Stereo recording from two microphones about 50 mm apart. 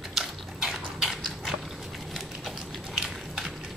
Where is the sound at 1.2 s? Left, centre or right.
Centre.